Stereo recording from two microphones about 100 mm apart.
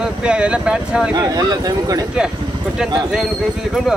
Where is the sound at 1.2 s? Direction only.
40° right (ahead or behind).